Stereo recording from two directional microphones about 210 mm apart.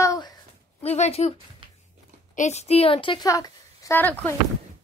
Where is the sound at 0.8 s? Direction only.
30° left (ahead or behind).